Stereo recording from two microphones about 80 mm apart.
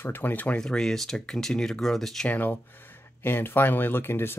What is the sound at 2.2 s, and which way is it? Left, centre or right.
Speech, left.